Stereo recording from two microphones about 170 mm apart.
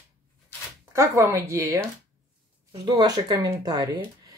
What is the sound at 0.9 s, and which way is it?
A woman's voice, 15° right (ahead or behind).